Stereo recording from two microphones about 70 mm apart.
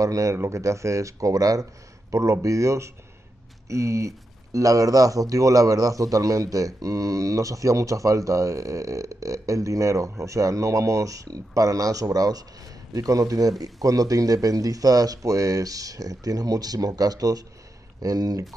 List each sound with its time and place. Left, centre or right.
0.0 s speech: right